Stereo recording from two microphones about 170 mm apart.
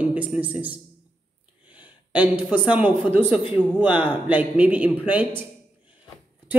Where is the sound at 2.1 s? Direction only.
10° right (ahead or behind).